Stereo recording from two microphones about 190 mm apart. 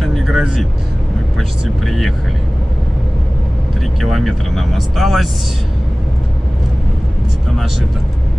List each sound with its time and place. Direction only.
0.0 s vehicle: centre (ahead or behind)
1.9 s speech: centre (ahead or behind)
4.0 s speech: centre (ahead or behind)